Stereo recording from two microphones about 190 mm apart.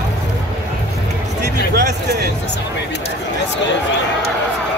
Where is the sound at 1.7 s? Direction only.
60° right (ahead or behind).